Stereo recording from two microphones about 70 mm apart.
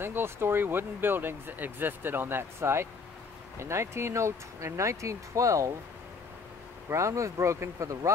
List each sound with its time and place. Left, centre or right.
0.0 s speech: right
6.9 s speech: right